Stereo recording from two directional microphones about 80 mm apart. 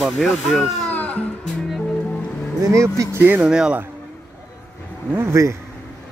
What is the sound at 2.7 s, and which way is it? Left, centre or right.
Speech, right.